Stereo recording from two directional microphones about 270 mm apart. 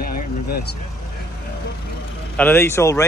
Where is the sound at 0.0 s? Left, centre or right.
Left.